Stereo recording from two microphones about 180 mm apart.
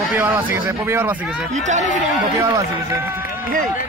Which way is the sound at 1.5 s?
40° right (ahead or behind).